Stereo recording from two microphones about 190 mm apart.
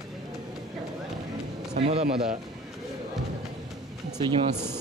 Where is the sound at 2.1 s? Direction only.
5° right (ahead or behind).